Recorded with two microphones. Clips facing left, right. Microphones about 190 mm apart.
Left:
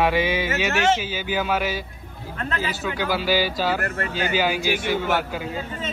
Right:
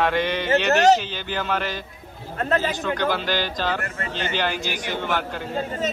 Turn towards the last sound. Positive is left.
turn(degrees=5)  # may be behind; listen again after turning